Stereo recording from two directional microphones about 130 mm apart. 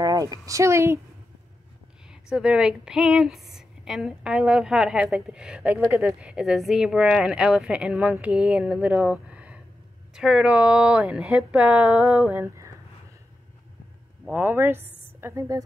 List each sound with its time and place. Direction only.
0.0 s a woman's voice: 30° right (ahead or behind)
2.0 s a woman's voice: 5° right (ahead or behind)
14.3 s a woman's voice: 15° right (ahead or behind)